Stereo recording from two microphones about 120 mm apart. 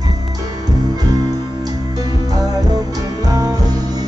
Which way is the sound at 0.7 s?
30° right (ahead or behind).